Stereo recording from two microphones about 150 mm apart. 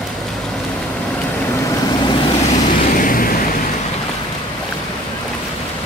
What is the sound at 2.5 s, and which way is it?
Vehicle, 65° left (ahead or behind).